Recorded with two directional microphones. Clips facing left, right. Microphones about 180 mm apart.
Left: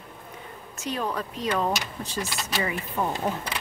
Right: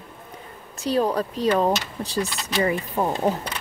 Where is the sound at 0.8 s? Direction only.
35° right (ahead or behind).